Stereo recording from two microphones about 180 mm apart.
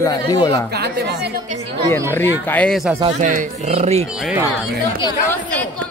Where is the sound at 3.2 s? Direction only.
45° right (ahead or behind).